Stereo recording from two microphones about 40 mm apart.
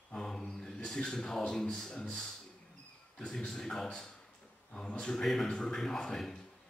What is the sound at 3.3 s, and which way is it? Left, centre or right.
Speech, centre.